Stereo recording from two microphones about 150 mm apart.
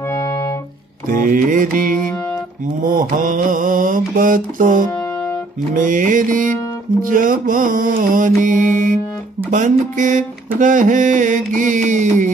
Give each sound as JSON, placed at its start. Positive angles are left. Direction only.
{"t": 0.1, "sound": "music", "side_deg": 20}
{"t": 1.0, "sound": "mantra", "side_deg": -65}
{"t": 4.9, "sound": "music", "side_deg": 20}
{"t": 5.8, "sound": "mantra", "side_deg": -60}